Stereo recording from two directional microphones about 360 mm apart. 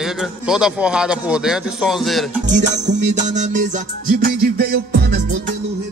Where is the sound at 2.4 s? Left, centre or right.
Right.